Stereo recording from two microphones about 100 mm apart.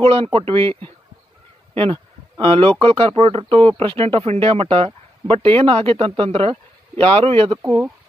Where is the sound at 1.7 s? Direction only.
60° right (ahead or behind).